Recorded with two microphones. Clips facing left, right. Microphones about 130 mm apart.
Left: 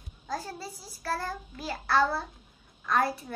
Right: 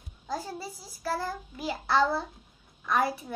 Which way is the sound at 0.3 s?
15° right (ahead or behind).